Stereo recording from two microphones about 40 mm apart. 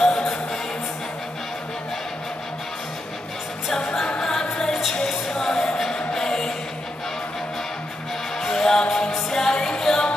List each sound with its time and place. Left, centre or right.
0.0 s music: centre
4.2 s music: centre
8.4 s music: centre